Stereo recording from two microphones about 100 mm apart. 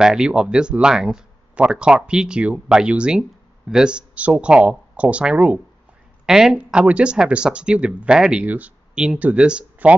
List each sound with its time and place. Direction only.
0.0 s speech: 5° right (ahead or behind)